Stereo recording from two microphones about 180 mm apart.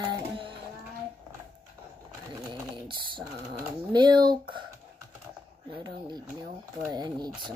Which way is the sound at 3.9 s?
25° right (ahead or behind).